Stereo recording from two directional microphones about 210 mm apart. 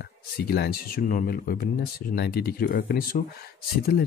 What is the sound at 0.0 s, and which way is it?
Speech, 50° left (ahead or behind).